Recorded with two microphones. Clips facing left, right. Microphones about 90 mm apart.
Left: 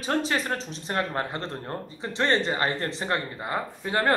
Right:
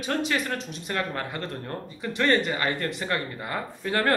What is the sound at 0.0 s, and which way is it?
A man's voice, 30° left (ahead or behind).